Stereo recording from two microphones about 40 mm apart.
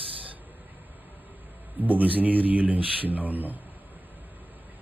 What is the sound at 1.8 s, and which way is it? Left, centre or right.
Speech, right.